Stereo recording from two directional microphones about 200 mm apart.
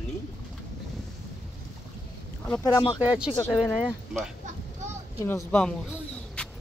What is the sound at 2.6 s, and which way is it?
Speech, 20° left (ahead or behind).